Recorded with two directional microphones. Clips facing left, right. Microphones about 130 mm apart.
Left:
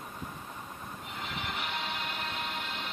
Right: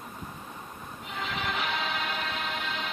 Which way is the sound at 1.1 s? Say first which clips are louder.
Right 6 dB; 90° right.